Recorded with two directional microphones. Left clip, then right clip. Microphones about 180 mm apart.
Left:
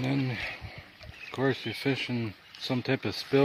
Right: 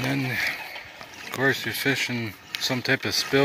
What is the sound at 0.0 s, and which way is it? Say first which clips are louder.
Speech: right 6 dB; 5° right (ahead or behind).